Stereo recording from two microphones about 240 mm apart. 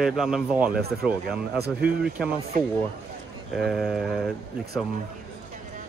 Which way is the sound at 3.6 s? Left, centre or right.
Centre.